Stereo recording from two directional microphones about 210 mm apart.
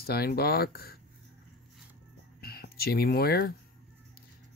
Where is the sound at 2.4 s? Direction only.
45° left (ahead or behind).